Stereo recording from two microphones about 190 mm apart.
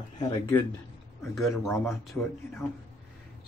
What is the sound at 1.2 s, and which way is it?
Speech, centre (ahead or behind).